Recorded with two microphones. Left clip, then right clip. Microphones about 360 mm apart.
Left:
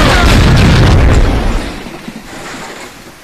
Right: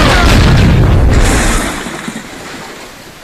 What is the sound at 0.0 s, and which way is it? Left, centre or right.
Boom, centre.